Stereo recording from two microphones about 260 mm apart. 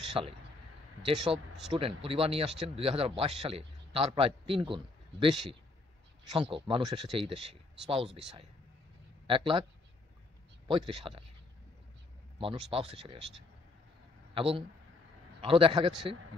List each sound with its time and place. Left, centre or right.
0.2 s a man's voice: centre
6.3 s a man's voice: centre
9.3 s a man's voice: centre
10.9 s a man's voice: right
12.4 s a man's voice: right
14.3 s a man's voice: right